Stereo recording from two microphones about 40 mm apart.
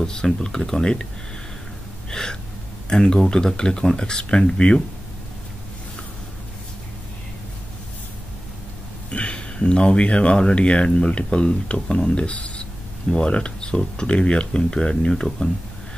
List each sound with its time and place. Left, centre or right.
0.0 s speech: centre
2.0 s gasp: centre
2.9 s speech: left
9.1 s speech: left